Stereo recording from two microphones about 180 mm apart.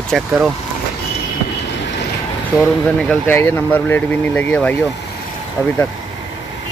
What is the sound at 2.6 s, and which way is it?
Speech, 5° left (ahead or behind).